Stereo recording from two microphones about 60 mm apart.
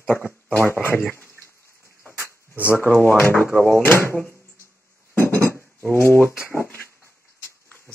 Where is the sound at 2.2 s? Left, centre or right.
Left.